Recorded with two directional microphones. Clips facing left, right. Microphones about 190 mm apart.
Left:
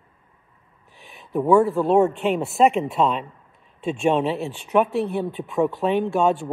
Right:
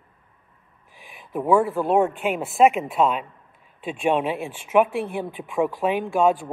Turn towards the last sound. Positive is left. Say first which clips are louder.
# even
turn(degrees=-5)  # may be behind; listen again after turning